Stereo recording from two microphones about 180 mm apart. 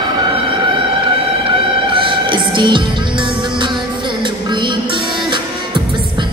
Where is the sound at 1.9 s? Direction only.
30° right (ahead or behind).